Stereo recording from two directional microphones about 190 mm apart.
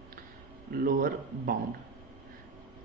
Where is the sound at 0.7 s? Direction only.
50° right (ahead or behind).